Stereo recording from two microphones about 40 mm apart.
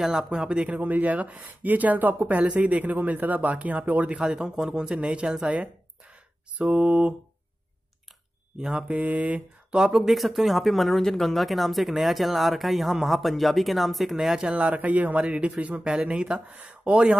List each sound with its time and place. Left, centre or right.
0.0 s speech: centre
0.3 s speech: right
0.7 s speech: right
4.3 s speech: centre
4.9 s speech: right
5.5 s a sound: right
6.7 s speech: right
8.5 s speech: centre
8.9 s mantra: right
9.9 s speech: centre
14.5 s speech: right